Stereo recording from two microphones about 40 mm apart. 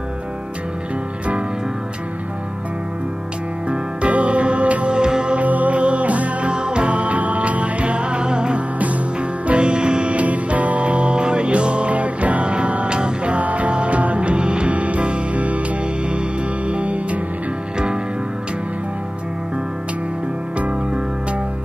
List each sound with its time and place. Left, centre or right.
3.6 s music: right
4.9 s music: right
5.4 s music: right
6.5 s music: right
10.1 s music: right
20.5 s music: right